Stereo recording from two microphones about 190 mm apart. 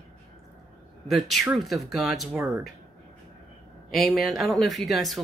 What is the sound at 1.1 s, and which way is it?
Speech, centre (ahead or behind).